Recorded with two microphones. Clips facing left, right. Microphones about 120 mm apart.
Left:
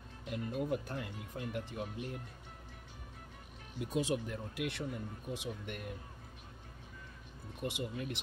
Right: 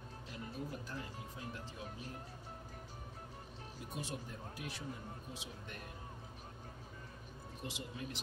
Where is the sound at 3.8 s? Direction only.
80° left; by 5.8 s 60° left (ahead or behind).